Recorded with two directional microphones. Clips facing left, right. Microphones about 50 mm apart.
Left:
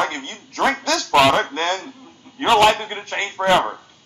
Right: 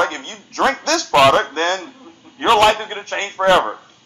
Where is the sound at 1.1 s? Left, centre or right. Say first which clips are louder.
Right 3 dB; centre.